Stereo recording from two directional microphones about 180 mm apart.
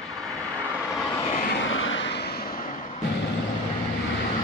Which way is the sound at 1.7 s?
90° left.